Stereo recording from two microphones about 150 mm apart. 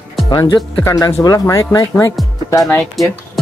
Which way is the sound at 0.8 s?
25° left (ahead or behind).